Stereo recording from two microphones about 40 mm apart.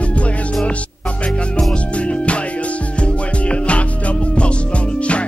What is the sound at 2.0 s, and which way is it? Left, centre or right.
Music, left.